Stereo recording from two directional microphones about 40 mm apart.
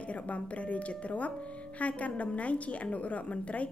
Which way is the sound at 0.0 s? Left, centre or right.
Left.